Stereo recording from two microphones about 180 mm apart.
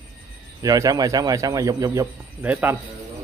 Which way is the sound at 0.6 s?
20° right (ahead or behind).